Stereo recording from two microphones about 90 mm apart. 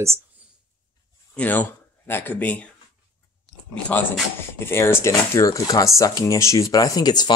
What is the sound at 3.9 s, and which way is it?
Speech, 20° left (ahead or behind).